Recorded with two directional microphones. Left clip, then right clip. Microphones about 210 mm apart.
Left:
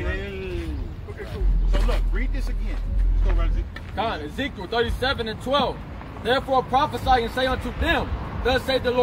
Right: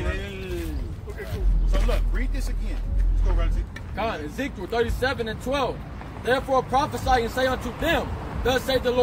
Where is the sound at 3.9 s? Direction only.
25° left (ahead or behind); by 9.0 s 10° left (ahead or behind).